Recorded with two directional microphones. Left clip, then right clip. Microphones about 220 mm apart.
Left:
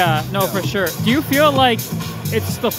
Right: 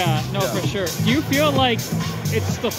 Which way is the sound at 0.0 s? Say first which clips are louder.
Left 5 dB; 25° left (ahead or behind).